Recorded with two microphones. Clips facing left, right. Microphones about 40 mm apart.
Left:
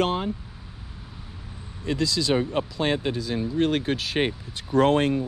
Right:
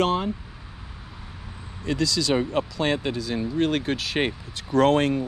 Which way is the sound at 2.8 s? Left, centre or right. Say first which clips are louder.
Left 2 dB; right.